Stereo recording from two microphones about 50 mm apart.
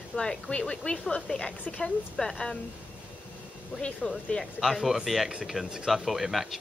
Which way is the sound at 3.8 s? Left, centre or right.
Left.